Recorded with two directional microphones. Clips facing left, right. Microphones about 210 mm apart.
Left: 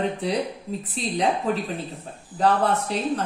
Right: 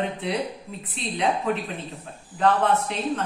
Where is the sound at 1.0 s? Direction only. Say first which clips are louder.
Left 3 dB; 40° left (ahead or behind).